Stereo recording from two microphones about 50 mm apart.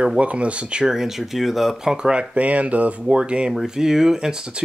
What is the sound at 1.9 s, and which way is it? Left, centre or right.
Speech, centre.